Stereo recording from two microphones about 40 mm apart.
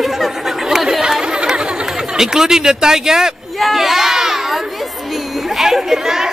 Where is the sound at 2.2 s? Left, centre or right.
Centre.